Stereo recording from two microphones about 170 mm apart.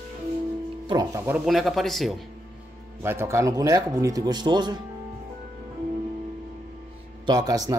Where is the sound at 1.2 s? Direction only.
5° right (ahead or behind).